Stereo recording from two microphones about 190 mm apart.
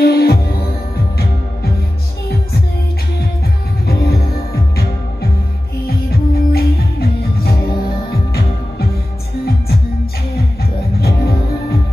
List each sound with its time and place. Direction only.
0.0 s music: 55° left (ahead or behind)
3.8 s music: 55° left (ahead or behind)
5.9 s music: 55° left (ahead or behind)
10.3 s music: 55° left (ahead or behind)